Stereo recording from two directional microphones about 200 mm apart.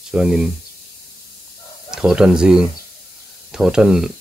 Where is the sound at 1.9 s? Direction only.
5° right (ahead or behind).